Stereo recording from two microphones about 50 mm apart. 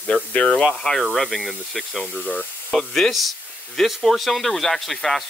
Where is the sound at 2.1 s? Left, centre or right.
Left.